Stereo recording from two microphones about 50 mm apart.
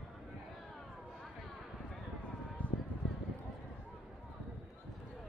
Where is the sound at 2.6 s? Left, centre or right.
Left.